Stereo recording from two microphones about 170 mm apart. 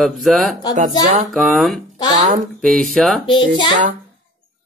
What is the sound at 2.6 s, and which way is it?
Speech, 5° left (ahead or behind).